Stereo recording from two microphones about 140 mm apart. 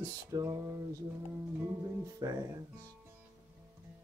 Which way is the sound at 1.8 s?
25° right (ahead or behind).